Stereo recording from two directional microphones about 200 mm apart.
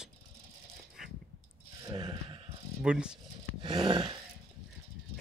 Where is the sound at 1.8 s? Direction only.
25° right (ahead or behind).